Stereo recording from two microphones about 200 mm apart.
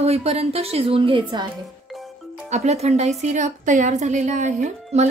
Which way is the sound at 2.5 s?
35° right (ahead or behind).